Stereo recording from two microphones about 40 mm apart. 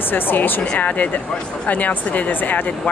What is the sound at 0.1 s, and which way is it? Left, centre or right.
Speech, left.